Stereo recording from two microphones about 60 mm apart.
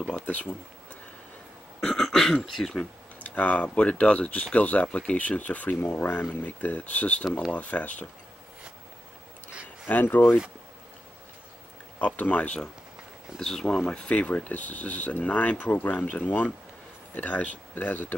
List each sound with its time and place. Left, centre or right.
0.0 s a sound: left
2.0 s throat clearing: centre
2.4 s speech: centre
3.3 s speech: left
9.8 s speech: left
12.0 s speech: left
13.4 s speech: centre; by 18.1 s left